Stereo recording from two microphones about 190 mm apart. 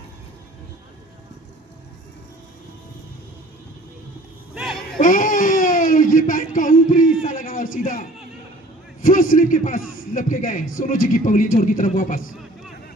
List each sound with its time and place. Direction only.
4.6 s music: centre (ahead or behind)
5.0 s a sound: 45° left (ahead or behind)
9.0 s a man's voice: 45° left (ahead or behind)